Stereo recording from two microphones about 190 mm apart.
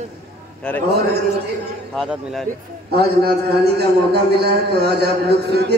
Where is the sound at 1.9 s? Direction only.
Centre (ahead or behind).